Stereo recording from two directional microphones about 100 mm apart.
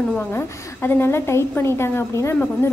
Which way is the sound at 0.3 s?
25° left (ahead or behind).